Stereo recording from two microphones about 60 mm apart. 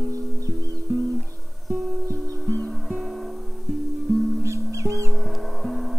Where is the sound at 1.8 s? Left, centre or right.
Centre.